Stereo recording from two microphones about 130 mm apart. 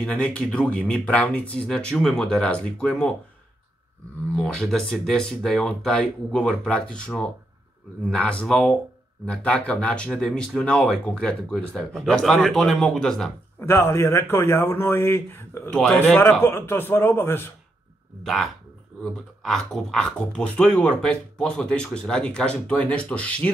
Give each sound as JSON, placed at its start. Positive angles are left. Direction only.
{"t": 0.0, "sound": "speech", "side_deg": 10}
{"t": 4.4, "sound": "speech", "side_deg": 5}
{"t": 13.6, "sound": "speech", "side_deg": 20}
{"t": 18.2, "sound": "speech", "side_deg": 0}